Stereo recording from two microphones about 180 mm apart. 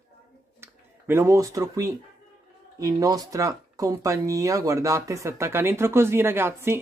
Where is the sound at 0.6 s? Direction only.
15° right (ahead or behind).